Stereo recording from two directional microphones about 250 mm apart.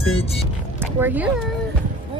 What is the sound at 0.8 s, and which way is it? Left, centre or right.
Speech, centre.